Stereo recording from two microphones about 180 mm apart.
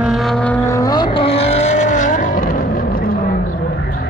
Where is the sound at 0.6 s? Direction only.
20° left (ahead or behind).